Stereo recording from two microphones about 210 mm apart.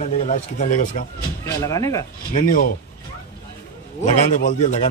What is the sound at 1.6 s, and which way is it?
Speech, 15° left (ahead or behind).